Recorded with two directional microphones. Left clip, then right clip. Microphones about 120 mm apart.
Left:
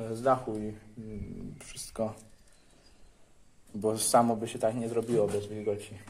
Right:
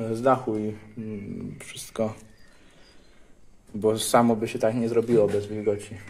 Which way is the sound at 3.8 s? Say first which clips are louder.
Right 4 dB; 5° right (ahead or behind).